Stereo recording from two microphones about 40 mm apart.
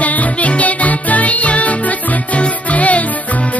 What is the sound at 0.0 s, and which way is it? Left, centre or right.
Music, left.